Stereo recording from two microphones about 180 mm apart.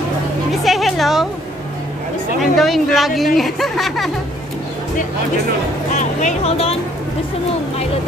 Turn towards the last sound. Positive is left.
turn(degrees=35)  # may be behind; listen again after turning